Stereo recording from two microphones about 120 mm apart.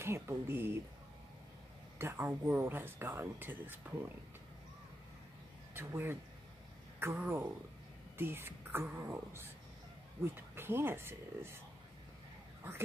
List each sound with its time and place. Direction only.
0.0 s speech: 20° right (ahead or behind)
2.0 s speech: 20° right (ahead or behind)
5.8 s speech: 20° right (ahead or behind)